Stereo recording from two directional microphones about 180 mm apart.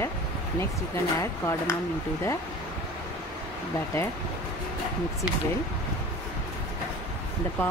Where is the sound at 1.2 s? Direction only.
15° left (ahead or behind).